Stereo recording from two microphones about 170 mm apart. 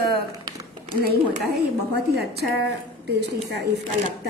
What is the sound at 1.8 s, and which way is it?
A woman's voice, 70° right (ahead or behind).